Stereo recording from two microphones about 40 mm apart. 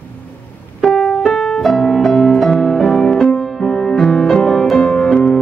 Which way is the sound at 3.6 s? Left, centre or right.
Centre.